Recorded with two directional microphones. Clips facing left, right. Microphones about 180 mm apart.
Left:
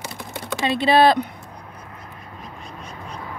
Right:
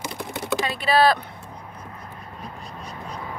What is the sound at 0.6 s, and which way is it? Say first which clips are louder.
Speech: left 4 dB; 25° left (ahead or behind).